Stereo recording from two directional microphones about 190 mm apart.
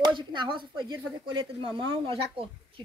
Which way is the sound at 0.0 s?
25° right (ahead or behind).